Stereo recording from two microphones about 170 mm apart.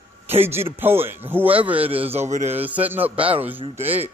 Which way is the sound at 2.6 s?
10° right (ahead or behind).